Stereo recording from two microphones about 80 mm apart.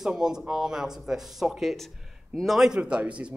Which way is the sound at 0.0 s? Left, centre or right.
Centre.